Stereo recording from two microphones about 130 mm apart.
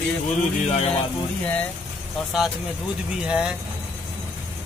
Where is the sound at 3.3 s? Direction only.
5° right (ahead or behind).